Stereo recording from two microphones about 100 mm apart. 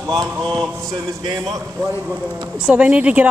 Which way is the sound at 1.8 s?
15° right (ahead or behind).